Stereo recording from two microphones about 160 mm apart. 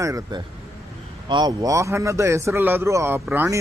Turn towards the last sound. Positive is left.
turn(degrees=-15)  # may be behind; listen again after turning